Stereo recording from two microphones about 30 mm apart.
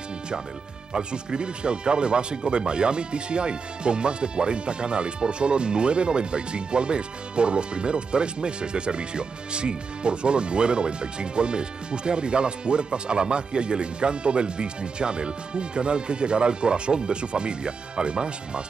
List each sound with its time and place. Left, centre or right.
0.9 s speech: right